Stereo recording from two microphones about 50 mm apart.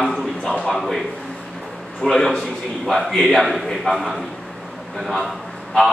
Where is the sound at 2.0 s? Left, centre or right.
Centre.